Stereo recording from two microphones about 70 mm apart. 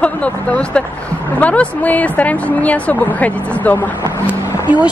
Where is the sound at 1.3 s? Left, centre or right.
Left.